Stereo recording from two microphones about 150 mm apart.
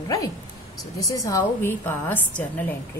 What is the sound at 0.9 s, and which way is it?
A woman's voice, 25° left (ahead or behind).